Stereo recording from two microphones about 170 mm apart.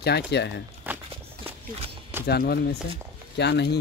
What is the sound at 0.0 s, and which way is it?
Speech, 80° left.